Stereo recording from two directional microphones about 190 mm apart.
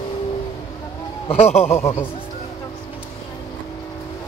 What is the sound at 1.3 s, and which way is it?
Speech, 35° left (ahead or behind).